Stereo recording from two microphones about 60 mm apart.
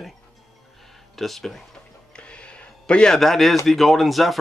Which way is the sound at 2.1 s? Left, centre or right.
Centre.